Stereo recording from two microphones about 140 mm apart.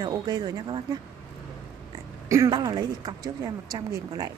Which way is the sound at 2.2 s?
25° right (ahead or behind).